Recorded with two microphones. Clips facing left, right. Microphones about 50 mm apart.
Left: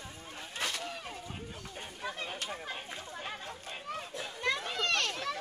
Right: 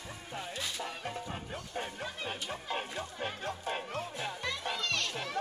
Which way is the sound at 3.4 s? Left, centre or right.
Right.